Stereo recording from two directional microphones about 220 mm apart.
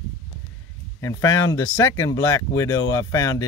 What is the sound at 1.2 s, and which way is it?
Speech, 65° left (ahead or behind).